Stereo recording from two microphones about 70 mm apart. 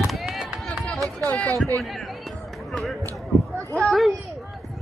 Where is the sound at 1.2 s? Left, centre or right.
Centre.